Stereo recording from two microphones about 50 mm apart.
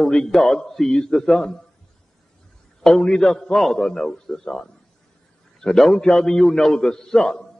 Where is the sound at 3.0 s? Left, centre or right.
Centre.